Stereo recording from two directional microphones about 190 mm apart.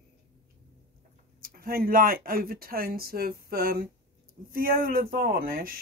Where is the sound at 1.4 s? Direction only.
50° right (ahead or behind).